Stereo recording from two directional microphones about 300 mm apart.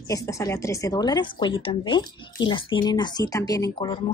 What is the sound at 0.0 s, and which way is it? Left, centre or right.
A woman's voice, centre.